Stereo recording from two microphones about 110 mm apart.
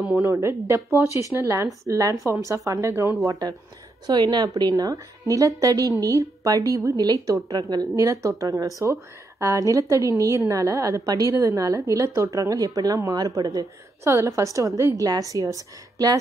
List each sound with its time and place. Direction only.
0.2 s speech: 25° right (ahead or behind)
3.3 s a woman's voice: 40° right (ahead or behind)